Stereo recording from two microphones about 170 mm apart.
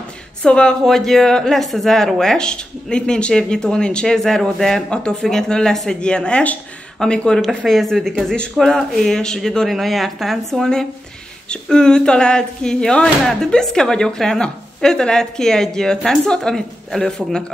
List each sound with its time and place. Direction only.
0.4 s speech: 5° left (ahead or behind)